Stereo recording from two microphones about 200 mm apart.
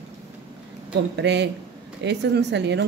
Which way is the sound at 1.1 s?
60° right (ahead or behind).